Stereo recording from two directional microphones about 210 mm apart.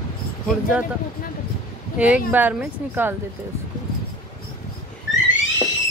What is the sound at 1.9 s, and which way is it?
Speech, 5° right (ahead or behind).